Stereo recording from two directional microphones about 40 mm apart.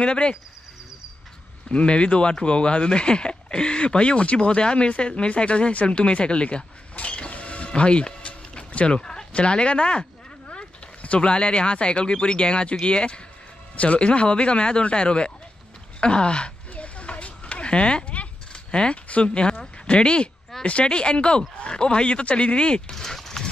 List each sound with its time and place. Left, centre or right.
0.0 s speech: left
1.7 s speech: left
16.0 s a sound: left
19.9 s speech: left
22.9 s dog: centre